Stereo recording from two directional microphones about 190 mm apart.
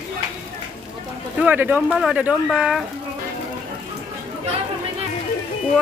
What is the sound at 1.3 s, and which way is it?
Speech, 10° right (ahead or behind).